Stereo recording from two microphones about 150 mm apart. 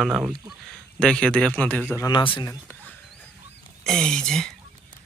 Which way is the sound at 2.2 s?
35° left (ahead or behind).